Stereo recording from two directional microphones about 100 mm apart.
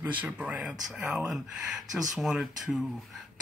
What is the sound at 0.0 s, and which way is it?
Speech, 15° right (ahead or behind).